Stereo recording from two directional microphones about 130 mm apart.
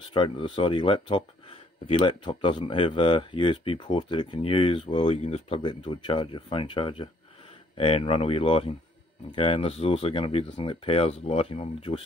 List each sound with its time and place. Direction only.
0.1 s speech: 40° left (ahead or behind)
5.2 s speech: 55° left (ahead or behind)
5.6 s speech: 40° left (ahead or behind)